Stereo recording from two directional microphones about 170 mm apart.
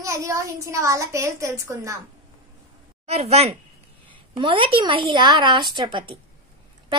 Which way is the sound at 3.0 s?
35° right (ahead or behind).